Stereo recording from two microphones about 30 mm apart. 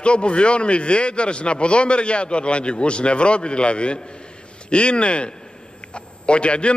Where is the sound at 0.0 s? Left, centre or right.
Left.